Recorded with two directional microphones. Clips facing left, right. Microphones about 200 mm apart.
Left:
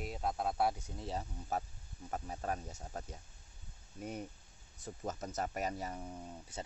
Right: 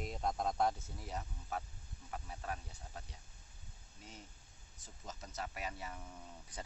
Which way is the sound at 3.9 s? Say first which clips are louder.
Left 13 dB; 60° left (ahead or behind).